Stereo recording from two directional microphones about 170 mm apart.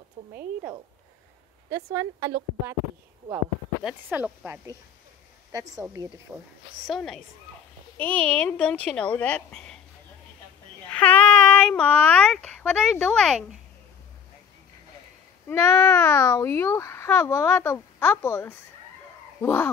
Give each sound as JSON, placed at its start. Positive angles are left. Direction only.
{"t": 1.7, "sound": "speech", "side_deg": -20}
{"t": 3.8, "sound": "speech", "side_deg": -10}
{"t": 5.5, "sound": "speech", "side_deg": -20}
{"t": 6.9, "sound": "speech", "side_deg": 5}
{"t": 10.9, "sound": "speech", "side_deg": 10}
{"t": 15.4, "sound": "speech", "side_deg": 15}